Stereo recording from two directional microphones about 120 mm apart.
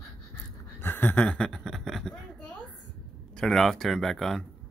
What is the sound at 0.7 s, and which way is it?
Chuckle, 15° left (ahead or behind).